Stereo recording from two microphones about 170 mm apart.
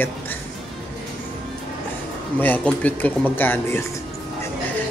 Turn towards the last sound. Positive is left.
turn(degrees=10)  # may be behind; listen again after turning